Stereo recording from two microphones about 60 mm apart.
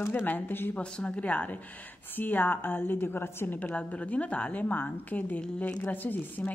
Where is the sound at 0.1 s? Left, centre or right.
Left.